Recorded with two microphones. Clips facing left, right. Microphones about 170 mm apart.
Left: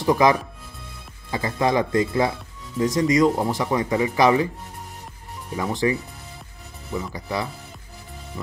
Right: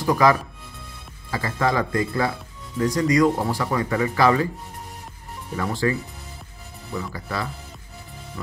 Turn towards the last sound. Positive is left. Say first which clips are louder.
# left 2 dB
turn(degrees=20)  # may be behind; listen again after turning